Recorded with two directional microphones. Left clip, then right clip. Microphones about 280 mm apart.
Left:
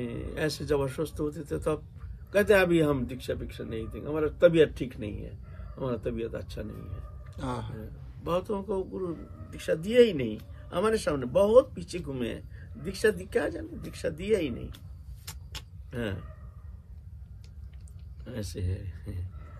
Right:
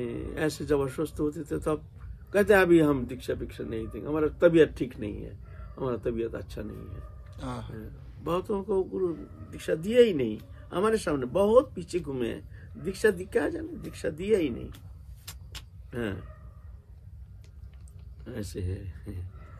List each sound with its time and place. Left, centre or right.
0.0 s a man's voice: centre
7.3 s speech: left
7.7 s a man's voice: centre
15.3 s vehicle: left
15.9 s speech: centre
18.2 s speech: centre